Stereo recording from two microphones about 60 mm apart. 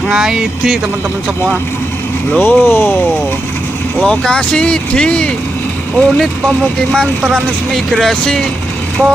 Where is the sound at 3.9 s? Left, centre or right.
Centre.